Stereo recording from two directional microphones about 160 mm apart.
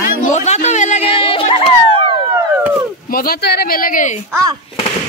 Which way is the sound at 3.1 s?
70° left (ahead or behind).